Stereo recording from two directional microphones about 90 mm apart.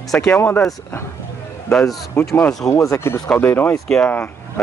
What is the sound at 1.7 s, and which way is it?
Speech, 5° left (ahead or behind).